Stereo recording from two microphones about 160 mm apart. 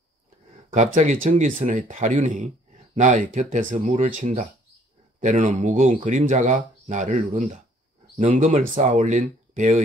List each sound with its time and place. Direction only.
0.7 s speech: 50° right (ahead or behind)